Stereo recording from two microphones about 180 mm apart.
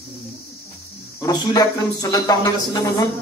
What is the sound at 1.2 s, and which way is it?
Speech, 20° left (ahead or behind).